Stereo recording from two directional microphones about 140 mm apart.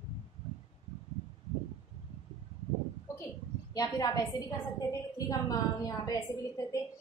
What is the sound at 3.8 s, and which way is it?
A woman's voice, 25° left (ahead or behind).